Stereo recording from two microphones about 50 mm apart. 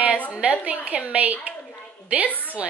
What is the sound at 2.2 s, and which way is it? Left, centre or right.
Speech, left.